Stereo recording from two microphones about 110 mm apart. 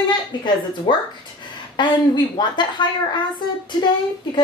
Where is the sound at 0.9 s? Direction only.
45° left (ahead or behind).